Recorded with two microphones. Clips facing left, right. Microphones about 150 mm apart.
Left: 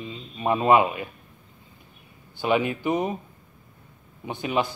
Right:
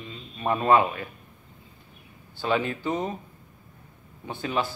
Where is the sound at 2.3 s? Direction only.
15° left (ahead or behind).